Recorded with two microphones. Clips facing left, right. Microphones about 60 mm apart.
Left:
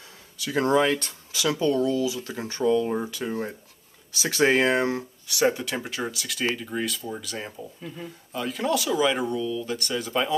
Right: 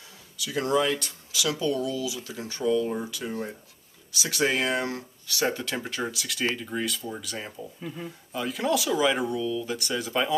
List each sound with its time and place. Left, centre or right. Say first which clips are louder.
0.4 s speech: left 3 dB; left; by 10.3 s centre